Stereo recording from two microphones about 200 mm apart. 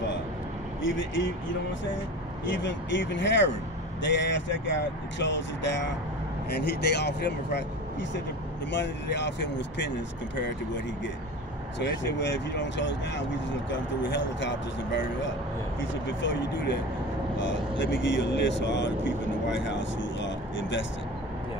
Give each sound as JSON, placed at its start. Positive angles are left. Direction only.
{"t": 0.8, "sound": "speech", "side_deg": 70}
{"t": 2.6, "sound": "speech", "side_deg": 65}
{"t": 11.8, "sound": "speech", "side_deg": 60}
{"t": 16.2, "sound": "speech", "side_deg": 65}